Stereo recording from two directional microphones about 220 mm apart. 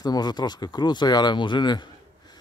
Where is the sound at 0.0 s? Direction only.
20° left (ahead or behind).